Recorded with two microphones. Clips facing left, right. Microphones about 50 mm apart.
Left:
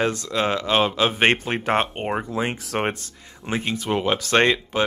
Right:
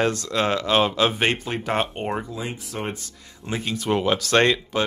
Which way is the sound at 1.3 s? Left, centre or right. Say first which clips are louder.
Left 3 dB; left.